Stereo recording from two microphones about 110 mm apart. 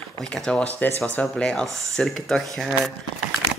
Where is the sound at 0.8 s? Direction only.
25° left (ahead or behind).